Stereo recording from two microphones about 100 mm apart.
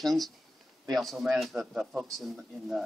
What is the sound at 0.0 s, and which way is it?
Speech, centre (ahead or behind).